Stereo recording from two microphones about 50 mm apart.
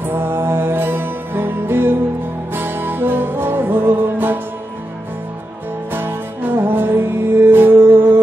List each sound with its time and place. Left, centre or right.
0.0 s music: right
5.9 s music: right